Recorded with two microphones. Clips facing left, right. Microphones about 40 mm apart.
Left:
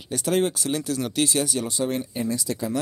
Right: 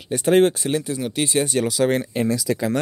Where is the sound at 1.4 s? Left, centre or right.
Right.